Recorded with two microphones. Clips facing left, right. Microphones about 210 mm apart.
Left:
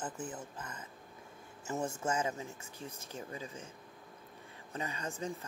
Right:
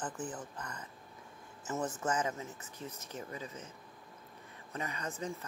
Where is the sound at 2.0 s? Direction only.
25° left (ahead or behind).